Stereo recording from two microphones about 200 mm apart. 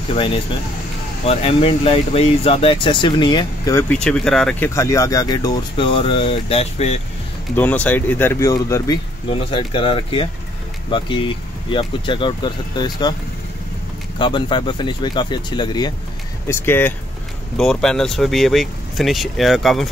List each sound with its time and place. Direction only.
0.1 s speech: 25° left (ahead or behind)
3.9 s speech: 5° left (ahead or behind); by 7.0 s 30° left (ahead or behind)
7.5 s speech: 10° left (ahead or behind)
14.1 s speech: 25° left (ahead or behind)
16.4 s speech: 10° left (ahead or behind)